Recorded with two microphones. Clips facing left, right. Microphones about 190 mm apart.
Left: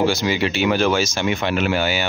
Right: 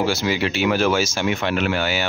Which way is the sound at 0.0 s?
5° right (ahead or behind).